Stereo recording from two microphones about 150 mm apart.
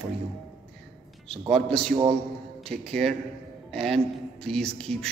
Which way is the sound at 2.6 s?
5° left (ahead or behind).